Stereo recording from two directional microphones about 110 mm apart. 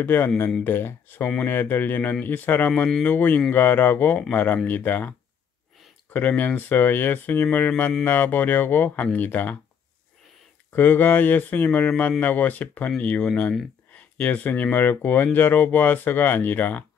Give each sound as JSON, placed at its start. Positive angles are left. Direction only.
{"t": 0.0, "sound": "speech", "side_deg": 20}
{"t": 6.1, "sound": "speech", "side_deg": 15}
{"t": 10.7, "sound": "speech", "side_deg": 15}